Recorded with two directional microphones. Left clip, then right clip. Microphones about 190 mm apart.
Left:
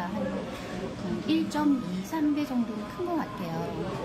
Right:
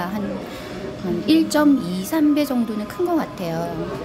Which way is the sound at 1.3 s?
50° right (ahead or behind).